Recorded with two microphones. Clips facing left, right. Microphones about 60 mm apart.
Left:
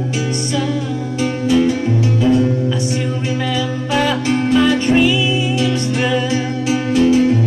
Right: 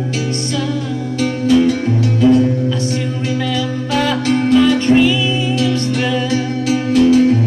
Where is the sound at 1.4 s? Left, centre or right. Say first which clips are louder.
Right 2 dB; centre.